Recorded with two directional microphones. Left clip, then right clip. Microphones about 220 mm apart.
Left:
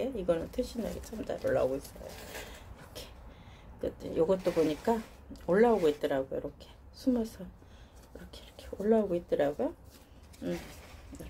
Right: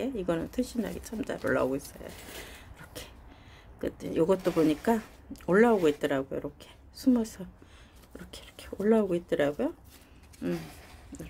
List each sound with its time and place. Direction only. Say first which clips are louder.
0.0 s speech: even; 20° right (ahead or behind)
2.9 s a sound: right 2 dB; 20° right (ahead or behind)
3.8 s speech: right 2 dB; 20° right (ahead or behind)